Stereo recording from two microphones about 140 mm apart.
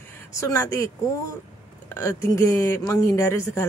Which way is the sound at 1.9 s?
25° left (ahead or behind).